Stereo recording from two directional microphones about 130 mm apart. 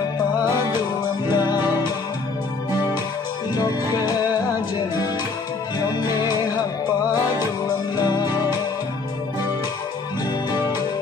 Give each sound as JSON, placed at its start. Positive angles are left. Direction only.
{"t": 1.3, "sound": "music", "side_deg": 35}
{"t": 3.5, "sound": "music", "side_deg": 30}
{"t": 7.6, "sound": "music", "side_deg": 35}